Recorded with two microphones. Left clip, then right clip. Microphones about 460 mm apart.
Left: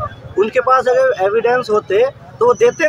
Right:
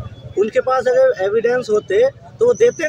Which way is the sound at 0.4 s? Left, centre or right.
Right.